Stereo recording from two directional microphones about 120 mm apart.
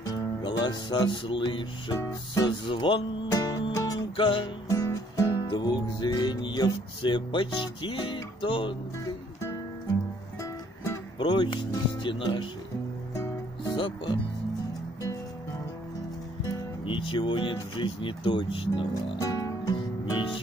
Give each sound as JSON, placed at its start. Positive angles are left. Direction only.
{"t": 0.0, "sound": "music", "side_deg": 35}
{"t": 2.0, "sound": "music", "side_deg": 30}
{"t": 2.5, "sound": "speech", "side_deg": 45}
{"t": 3.3, "sound": "music", "side_deg": 30}
{"t": 4.2, "sound": "speech", "side_deg": 45}
{"t": 4.6, "sound": "music", "side_deg": 25}
{"t": 5.9, "sound": "music", "side_deg": 35}
{"t": 10.4, "sound": "music", "side_deg": 25}
{"t": 11.1, "sound": "speech", "side_deg": 40}
{"t": 13.7, "sound": "speech", "side_deg": 40}
{"t": 16.8, "sound": "speech", "side_deg": 45}
{"t": 19.1, "sound": "music", "side_deg": 30}